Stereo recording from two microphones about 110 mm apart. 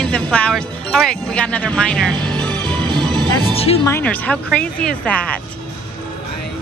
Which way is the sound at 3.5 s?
65° left (ahead or behind).